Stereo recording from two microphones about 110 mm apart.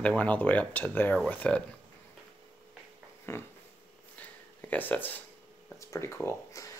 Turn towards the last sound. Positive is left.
turn(degrees=25)  # may be behind; listen again after turning